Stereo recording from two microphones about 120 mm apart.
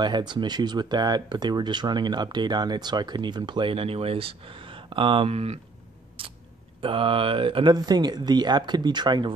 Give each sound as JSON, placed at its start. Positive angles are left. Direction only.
{"t": 0.0, "sound": "speech", "side_deg": -40}
{"t": 6.2, "sound": "chewing", "side_deg": -50}
{"t": 6.8, "sound": "speech", "side_deg": -45}
{"t": 7.7, "sound": "speech", "side_deg": -35}